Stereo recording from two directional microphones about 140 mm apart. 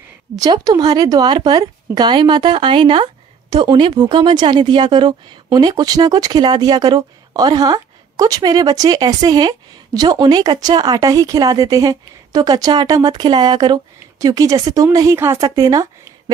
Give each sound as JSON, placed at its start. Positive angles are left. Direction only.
{"t": 0.4, "sound": "speech", "side_deg": -30}